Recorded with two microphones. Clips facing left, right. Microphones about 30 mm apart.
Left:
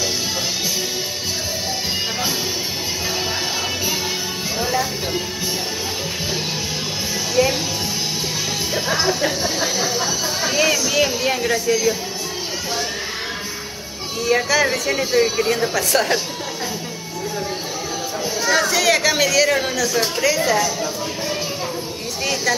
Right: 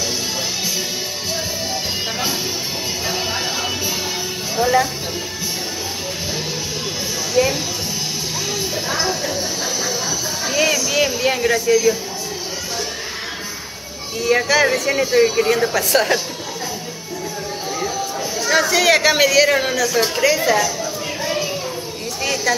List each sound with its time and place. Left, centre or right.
4.6 s music: centre
7.4 s speech: centre
8.7 s speech: centre
10.5 s speech: centre
11.7 s speech: centre
14.2 s speech: centre
18.5 s speech: centre
22.2 s a woman's voice: centre